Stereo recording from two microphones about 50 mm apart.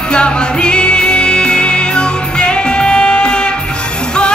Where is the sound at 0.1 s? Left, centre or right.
Centre.